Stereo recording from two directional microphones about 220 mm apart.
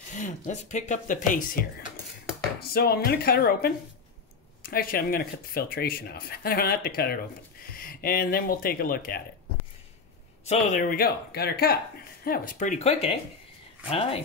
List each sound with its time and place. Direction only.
0.1 s speech: 35° left (ahead or behind)
10.4 s speech: 30° left (ahead or behind)